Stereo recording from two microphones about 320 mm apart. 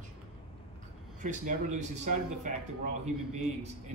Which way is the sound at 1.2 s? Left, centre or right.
Right.